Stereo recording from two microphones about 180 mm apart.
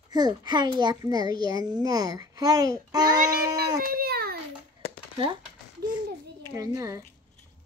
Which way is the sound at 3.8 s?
60° right (ahead or behind).